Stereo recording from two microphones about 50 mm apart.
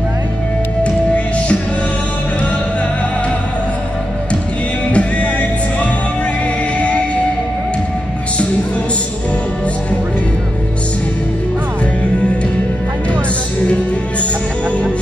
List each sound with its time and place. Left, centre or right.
0.8 s music: left
4.9 s music: left